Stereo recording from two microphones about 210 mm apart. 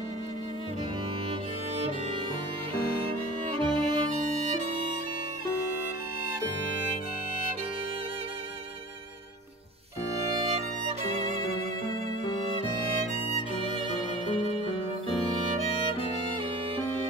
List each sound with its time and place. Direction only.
3.5 s music: 25° right (ahead or behind)